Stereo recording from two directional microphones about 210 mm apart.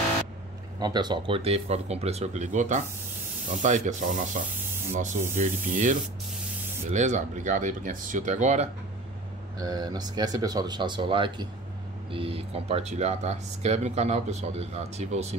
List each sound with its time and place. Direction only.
0.7 s speech: 20° right (ahead or behind)
9.6 s speech: 20° right (ahead or behind)